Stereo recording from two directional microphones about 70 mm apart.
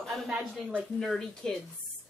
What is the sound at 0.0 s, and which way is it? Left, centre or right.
A woman's voice, centre.